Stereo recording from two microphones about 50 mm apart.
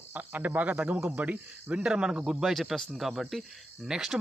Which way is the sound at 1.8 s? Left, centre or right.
Centre.